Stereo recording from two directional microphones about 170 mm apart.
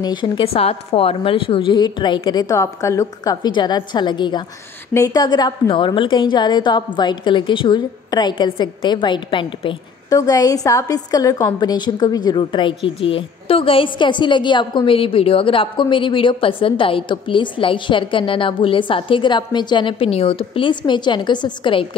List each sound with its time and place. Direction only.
0.0 s a woman's voice: 25° left (ahead or behind)